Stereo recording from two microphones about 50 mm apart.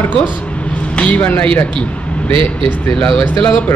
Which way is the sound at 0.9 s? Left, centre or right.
Left.